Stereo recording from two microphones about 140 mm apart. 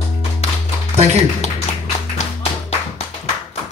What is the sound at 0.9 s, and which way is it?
Music, 50° right (ahead or behind).